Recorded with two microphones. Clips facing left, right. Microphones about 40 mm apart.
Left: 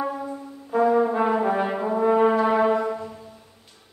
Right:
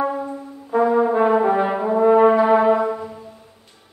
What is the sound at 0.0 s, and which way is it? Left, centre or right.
Brass instrument, centre.